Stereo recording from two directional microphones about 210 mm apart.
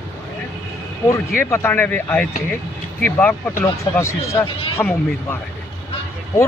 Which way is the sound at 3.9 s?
20° left (ahead or behind).